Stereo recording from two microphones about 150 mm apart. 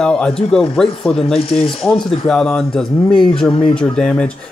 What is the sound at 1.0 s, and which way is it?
Speech, 35° left (ahead or behind).